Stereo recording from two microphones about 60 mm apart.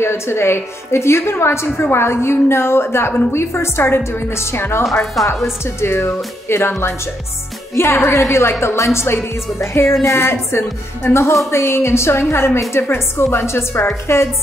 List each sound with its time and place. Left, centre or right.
0.0 s a woman's voice: left
5.2 s speech: centre
5.8 s a woman's voice: left
7.7 s a woman's voice: left